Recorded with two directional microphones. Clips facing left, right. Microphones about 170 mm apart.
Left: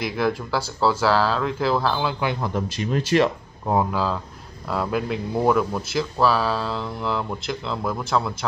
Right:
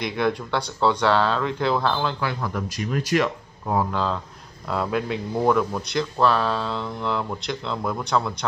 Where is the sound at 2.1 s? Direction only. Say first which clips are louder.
Left 2 dB; 20° left (ahead or behind).